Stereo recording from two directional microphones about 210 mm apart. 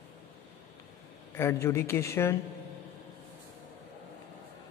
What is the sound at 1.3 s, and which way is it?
Speech, 15° left (ahead or behind).